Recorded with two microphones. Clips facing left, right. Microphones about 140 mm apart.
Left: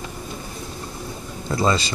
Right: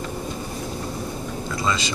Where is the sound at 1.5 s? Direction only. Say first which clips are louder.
Left 5 dB; 35° left (ahead or behind).